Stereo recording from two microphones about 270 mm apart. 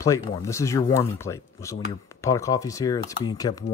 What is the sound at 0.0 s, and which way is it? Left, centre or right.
Speech, centre.